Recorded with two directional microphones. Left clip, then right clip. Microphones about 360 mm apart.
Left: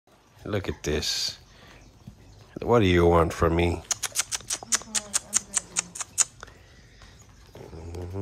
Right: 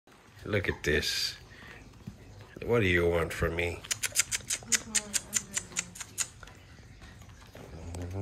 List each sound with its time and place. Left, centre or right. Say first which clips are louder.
0.5 s speech: even; centre
2.6 s typing: left 6 dB; centre